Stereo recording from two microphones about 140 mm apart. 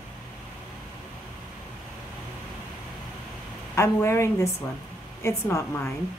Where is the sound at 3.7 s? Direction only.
20° left (ahead or behind).